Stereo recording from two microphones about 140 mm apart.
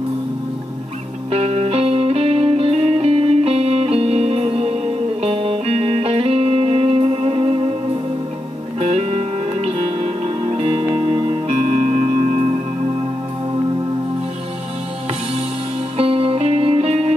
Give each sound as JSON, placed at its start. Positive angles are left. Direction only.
{"t": 1.3, "sound": "music", "side_deg": -45}
{"t": 8.7, "sound": "music", "side_deg": -45}
{"t": 11.6, "sound": "music", "side_deg": -60}
{"t": 16.0, "sound": "music", "side_deg": -45}